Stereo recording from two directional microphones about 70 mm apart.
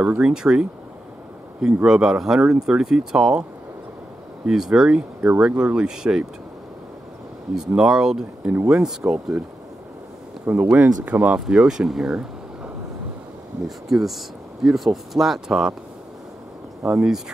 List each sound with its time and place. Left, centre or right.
0.0 s speech: centre
4.5 s speech: centre
7.7 s speech: centre
10.4 s speech: centre
11.3 s speech: centre
16.8 s speech: centre